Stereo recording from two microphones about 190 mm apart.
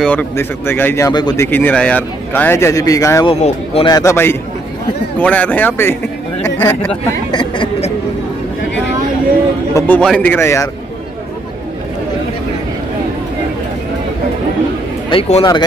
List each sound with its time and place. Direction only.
0.0 s speech: 10° left (ahead or behind)
3.3 s a man's voice: 35° left (ahead or behind)
3.8 s speech: 15° left (ahead or behind)
7.2 s speech: 25° left (ahead or behind)
9.8 s speech: 5° left (ahead or behind)
15.0 s a man's voice: 30° left (ahead or behind)